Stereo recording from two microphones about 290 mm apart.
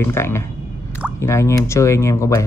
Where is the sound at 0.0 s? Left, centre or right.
Centre.